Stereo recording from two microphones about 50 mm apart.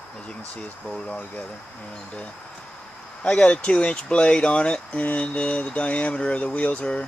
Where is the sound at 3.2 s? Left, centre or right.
Left.